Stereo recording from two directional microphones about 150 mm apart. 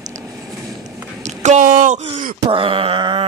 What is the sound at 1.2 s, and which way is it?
Speech, 50° right (ahead or behind).